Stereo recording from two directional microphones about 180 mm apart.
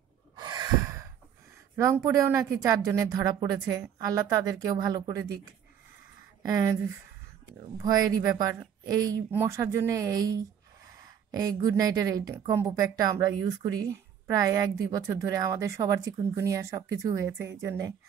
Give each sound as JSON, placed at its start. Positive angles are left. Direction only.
{"t": 0.4, "sound": "gasp", "side_deg": -20}
{"t": 1.8, "sound": "a woman's voice", "side_deg": -15}